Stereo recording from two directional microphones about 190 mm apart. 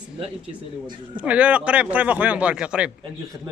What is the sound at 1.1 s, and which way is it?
A man's voice, 5° right (ahead or behind).